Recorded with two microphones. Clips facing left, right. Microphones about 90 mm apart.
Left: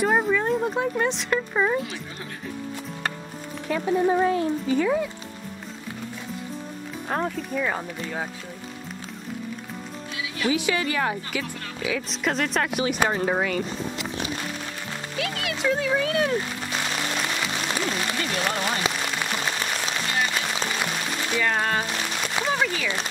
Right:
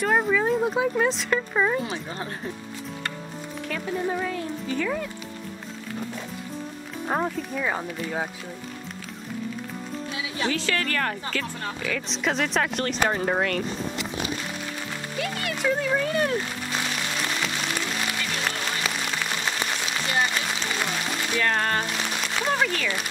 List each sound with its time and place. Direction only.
0.0 s speech: centre (ahead or behind)
3.6 s speech: 20° left (ahead or behind)
7.1 s speech: 5° right (ahead or behind)
10.5 s speech: 15° left (ahead or behind)
15.1 s speech: centre (ahead or behind)
21.4 s speech: 5° left (ahead or behind)
22.5 s a sound: 5° left (ahead or behind)